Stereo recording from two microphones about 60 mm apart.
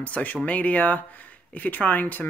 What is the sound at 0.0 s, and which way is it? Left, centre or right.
Speech, left.